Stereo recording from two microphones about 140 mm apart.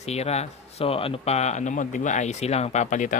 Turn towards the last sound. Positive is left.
turn(degrees=60)  # may be behind; listen again after turning